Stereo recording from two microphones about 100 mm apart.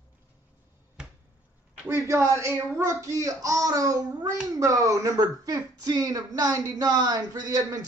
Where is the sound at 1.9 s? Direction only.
30° right (ahead or behind).